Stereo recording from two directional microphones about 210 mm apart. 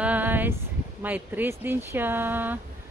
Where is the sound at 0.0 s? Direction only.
10° right (ahead or behind).